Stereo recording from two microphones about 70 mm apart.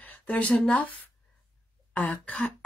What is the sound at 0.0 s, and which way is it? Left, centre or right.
Speech, centre.